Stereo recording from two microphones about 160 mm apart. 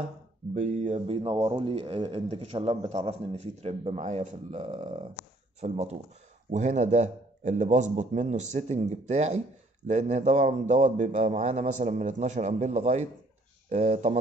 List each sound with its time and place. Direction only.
0.6 s speech: 45° right (ahead or behind)